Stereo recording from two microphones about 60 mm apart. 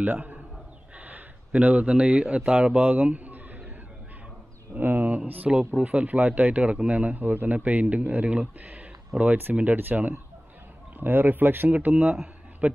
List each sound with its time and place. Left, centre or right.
0.0 s a man's voice: right
0.9 s a sound: right
2.5 s a man's voice: right
4.7 s speech: right
5.5 s speech: centre
9.1 s speech: centre
9.6 s a man's voice: right